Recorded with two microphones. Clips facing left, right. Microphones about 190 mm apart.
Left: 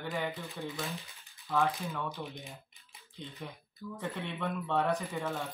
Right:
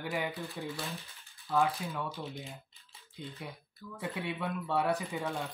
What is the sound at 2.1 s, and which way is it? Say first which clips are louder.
Speech: right 1 dB; 15° left (ahead or behind).